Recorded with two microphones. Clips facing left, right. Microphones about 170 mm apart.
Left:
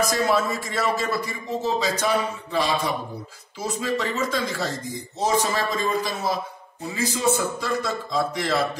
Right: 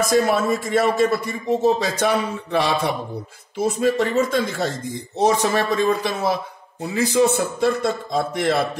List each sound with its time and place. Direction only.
0.3 s a man's voice: 55° right (ahead or behind)
3.5 s a man's voice: 55° right (ahead or behind)
5.2 s a man's voice: 65° right (ahead or behind)